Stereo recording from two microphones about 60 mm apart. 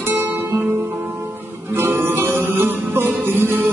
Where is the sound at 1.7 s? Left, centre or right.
Right.